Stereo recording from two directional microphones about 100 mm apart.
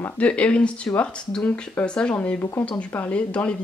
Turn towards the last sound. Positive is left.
turn(degrees=10)  # may be behind; listen again after turning